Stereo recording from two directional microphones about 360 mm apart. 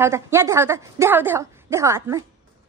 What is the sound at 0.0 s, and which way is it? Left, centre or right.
A woman's voice, centre.